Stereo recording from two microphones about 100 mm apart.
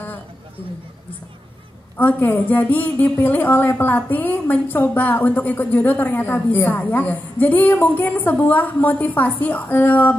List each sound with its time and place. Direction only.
2.0 s a woman's voice: 20° left (ahead or behind)